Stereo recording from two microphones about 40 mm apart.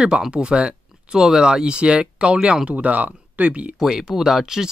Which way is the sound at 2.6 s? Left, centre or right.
Right.